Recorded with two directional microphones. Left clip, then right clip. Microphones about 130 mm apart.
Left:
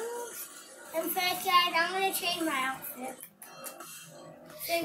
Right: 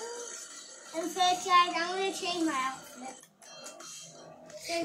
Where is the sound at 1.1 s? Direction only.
25° left (ahead or behind).